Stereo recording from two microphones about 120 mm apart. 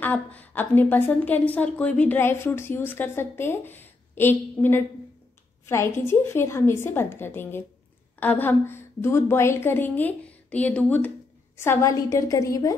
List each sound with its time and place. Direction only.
0.0 s a woman's voice: 15° left (ahead or behind)